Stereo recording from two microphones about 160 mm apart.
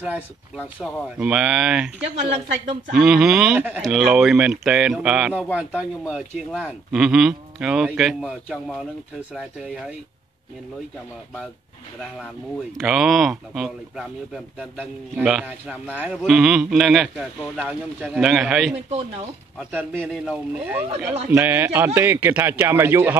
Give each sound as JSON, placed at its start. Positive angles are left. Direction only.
{"t": 1.1, "sound": "speech", "side_deg": -5}
{"t": 2.9, "sound": "speech", "side_deg": -5}
{"t": 12.7, "sound": "speech", "side_deg": 0}
{"t": 18.9, "sound": "speech", "side_deg": -40}
{"t": 19.7, "sound": "a man's voice", "side_deg": -10}